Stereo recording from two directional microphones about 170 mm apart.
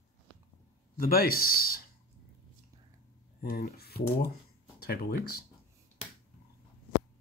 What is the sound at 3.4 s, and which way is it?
Speech, 65° left (ahead or behind).